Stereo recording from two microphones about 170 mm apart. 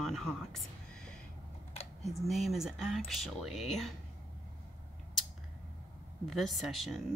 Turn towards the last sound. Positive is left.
turn(degrees=0)  # may be behind; listen again after turning